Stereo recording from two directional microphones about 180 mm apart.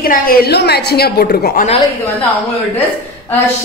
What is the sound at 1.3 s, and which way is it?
Speech, 50° left (ahead or behind).